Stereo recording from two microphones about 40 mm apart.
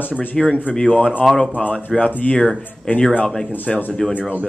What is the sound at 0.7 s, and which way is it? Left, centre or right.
Speech, left.